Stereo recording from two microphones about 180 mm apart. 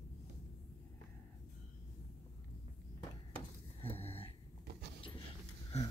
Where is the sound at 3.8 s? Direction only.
35° left (ahead or behind).